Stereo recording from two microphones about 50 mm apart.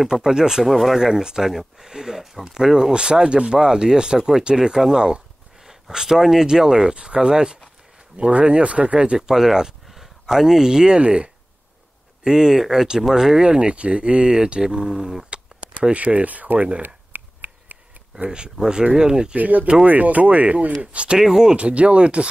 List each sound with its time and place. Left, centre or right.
0.0 s speech: centre
0.7 s speech: centre
9.3 s speech: centre; by 16.8 s right
16.8 s a sound: right
18.3 s speech: centre
19.3 s speech: right
21.2 s speech: centre
21.5 s speech: right